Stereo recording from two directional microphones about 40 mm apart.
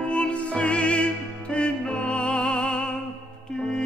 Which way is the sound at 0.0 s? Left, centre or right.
Left.